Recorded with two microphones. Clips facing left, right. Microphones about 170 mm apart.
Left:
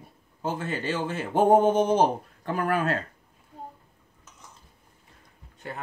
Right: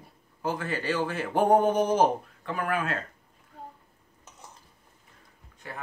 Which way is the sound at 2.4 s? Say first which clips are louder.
Left 5 dB; 40° left (ahead or behind).